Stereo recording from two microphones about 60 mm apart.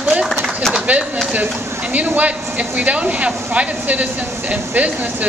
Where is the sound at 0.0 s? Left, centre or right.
Right.